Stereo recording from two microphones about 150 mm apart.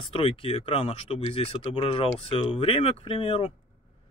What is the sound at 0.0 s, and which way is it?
Speech, 35° left (ahead or behind).